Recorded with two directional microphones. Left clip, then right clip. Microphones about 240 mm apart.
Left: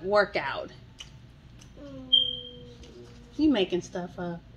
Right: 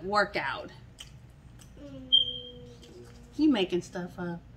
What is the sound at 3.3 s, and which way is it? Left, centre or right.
Speech, centre.